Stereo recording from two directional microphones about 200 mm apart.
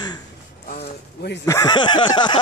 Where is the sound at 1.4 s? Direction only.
15° left (ahead or behind).